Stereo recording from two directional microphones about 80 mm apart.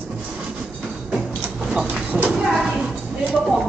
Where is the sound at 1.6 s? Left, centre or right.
Centre.